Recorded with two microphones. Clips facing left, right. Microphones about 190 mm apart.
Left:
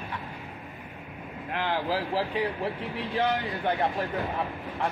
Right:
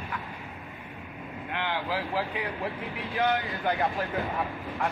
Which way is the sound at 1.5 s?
35° left (ahead or behind).